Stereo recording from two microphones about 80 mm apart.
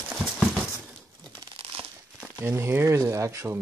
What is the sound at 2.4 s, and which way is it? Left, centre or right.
Speech, right.